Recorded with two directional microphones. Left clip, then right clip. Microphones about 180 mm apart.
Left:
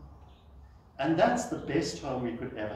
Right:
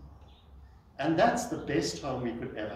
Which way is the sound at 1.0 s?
25° right (ahead or behind).